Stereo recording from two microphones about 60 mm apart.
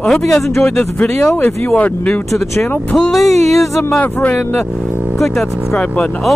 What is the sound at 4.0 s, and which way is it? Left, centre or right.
Speech, left.